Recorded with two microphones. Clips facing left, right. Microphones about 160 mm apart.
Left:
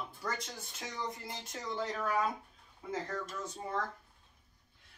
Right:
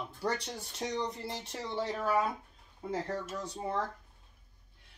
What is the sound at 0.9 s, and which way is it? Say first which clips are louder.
Speech: right 5 dB; 70° right (ahead or behind).